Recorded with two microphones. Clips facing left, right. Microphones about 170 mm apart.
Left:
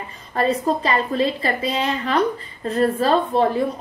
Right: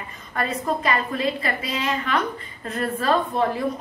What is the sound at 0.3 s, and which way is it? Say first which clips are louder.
A woman's voice: left 5 dB; 30° left (ahead or behind).